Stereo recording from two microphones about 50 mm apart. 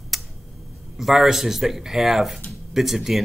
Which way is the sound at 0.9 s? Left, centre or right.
Centre.